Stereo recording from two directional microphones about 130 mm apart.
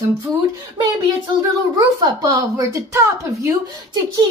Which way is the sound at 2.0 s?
30° right (ahead or behind).